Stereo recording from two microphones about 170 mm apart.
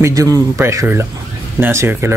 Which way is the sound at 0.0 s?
20° right (ahead or behind).